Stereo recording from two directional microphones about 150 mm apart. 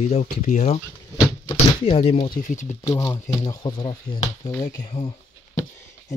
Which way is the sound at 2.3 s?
60° left (ahead or behind).